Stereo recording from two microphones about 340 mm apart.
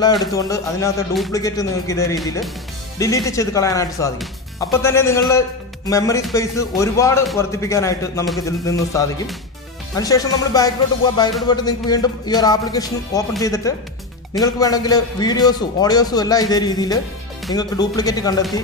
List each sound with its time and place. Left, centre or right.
0.1 s speech: centre